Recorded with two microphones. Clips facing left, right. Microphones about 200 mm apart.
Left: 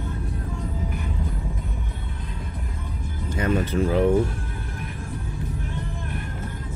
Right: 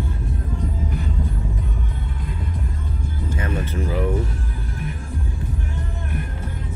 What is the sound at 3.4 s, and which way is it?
Music, 20° left (ahead or behind).